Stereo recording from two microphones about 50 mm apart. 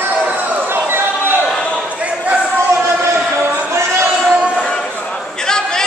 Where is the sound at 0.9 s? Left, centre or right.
Right.